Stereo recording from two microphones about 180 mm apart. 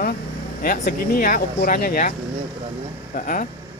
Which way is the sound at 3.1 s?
45° left (ahead or behind).